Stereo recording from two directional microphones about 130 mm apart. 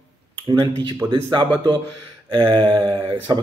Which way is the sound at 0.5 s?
35° right (ahead or behind).